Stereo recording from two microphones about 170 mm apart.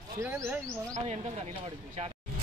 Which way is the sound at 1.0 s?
40° right (ahead or behind).